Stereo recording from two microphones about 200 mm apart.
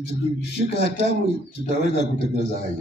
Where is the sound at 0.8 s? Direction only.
60° left (ahead or behind).